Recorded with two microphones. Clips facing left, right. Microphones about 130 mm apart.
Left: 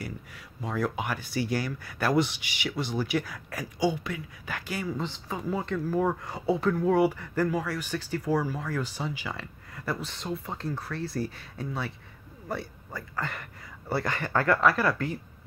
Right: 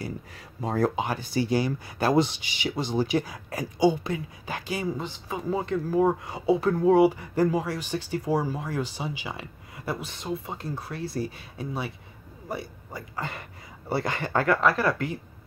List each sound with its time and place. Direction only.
0.6 s speech: 35° right (ahead or behind)
4.9 s speech: 10° right (ahead or behind)
5.5 s speech: 20° right (ahead or behind)